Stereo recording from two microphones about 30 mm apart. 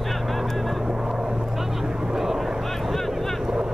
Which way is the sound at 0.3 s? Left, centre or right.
Centre.